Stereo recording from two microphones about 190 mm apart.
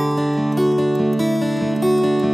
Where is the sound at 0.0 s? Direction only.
Centre (ahead or behind).